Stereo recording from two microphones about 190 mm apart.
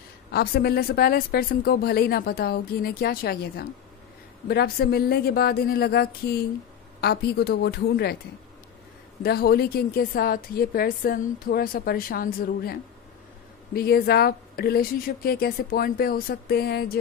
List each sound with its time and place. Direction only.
0.3 s a woman's voice: 55° left (ahead or behind)
9.2 s speech: 55° left (ahead or behind)
13.7 s speech: 55° left (ahead or behind)